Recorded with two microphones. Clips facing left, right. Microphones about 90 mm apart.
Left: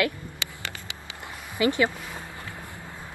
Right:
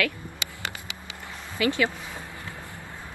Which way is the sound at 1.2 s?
20° left (ahead or behind).